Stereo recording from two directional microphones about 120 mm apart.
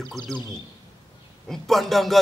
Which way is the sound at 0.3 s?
5° left (ahead or behind).